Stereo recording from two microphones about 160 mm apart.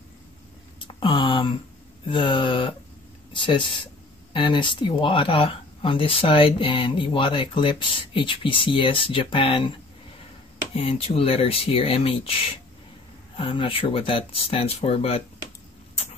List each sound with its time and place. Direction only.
0.7 s a sound: 30° left (ahead or behind)
2.0 s speech: 30° left (ahead or behind)
10.7 s speech: 35° left (ahead or behind)